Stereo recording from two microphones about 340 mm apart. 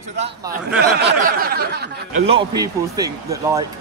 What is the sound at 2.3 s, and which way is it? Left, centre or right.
Speech, centre.